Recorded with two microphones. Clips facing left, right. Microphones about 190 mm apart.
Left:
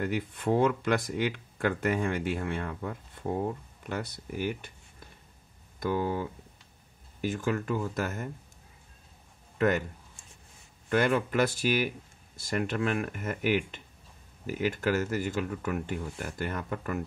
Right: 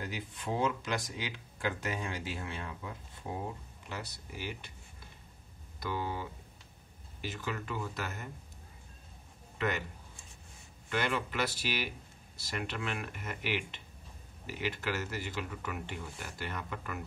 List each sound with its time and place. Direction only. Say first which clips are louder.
0.0 s speech: left 10 dB; 55° left (ahead or behind)
5.8 s speech: left 7 dB; 50° left (ahead or behind)
9.6 s speech: left 8 dB; 45° left (ahead or behind)
10.9 s speech: left 8 dB; 50° left (ahead or behind)